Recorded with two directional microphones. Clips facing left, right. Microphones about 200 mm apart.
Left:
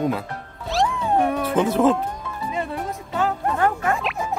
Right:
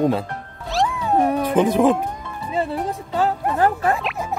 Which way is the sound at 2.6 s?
35° right (ahead or behind).